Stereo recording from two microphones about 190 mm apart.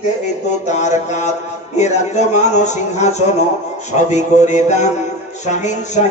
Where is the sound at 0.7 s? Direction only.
40° left (ahead or behind).